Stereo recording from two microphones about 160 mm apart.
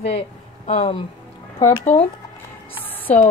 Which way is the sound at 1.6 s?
15° left (ahead or behind).